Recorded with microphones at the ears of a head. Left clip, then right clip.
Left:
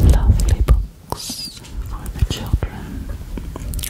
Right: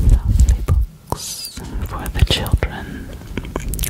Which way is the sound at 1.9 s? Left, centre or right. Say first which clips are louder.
Right 9 dB; right.